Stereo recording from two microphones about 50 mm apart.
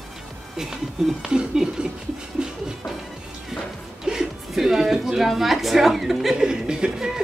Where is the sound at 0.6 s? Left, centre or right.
Centre.